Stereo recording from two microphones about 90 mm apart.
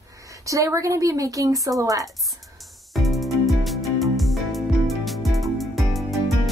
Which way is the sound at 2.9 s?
Centre (ahead or behind).